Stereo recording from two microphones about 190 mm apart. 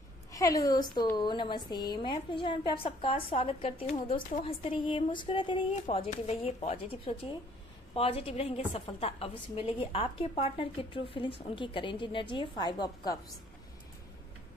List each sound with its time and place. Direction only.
0.3 s a woman's voice: 20° left (ahead or behind)